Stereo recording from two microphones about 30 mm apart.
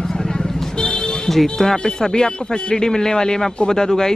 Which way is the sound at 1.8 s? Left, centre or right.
Left.